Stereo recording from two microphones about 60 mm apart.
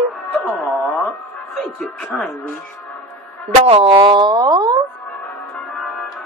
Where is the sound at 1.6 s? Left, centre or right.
Centre.